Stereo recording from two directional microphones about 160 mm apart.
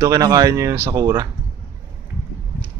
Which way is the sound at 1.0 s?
25° right (ahead or behind).